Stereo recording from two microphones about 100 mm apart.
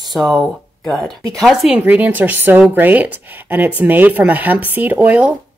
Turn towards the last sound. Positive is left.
turn(degrees=-15)  # may be behind; listen again after turning